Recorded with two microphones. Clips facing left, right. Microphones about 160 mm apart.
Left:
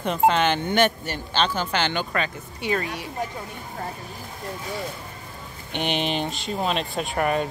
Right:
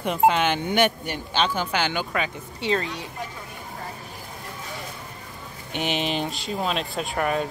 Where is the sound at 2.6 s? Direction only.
25° right (ahead or behind).